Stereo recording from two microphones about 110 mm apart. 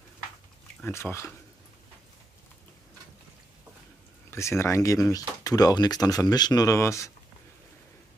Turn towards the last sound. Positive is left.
turn(degrees=30)  # may be behind; listen again after turning